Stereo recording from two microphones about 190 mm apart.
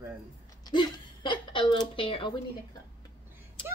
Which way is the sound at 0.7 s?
25° left (ahead or behind).